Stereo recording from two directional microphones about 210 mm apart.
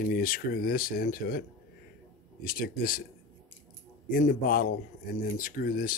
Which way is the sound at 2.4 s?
45° left (ahead or behind).